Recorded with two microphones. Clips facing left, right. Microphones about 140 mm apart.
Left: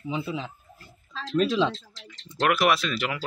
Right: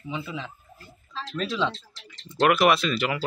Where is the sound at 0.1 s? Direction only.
30° left (ahead or behind).